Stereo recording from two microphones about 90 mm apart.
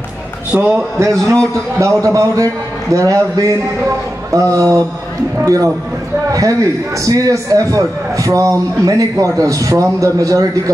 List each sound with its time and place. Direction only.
0.5 s a man's voice: 15° right (ahead or behind)
0.9 s a man's voice: 30° right (ahead or behind)
7.1 s a man's voice: 40° right (ahead or behind)